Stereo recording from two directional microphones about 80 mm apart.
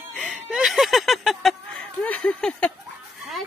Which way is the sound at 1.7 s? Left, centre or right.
Centre.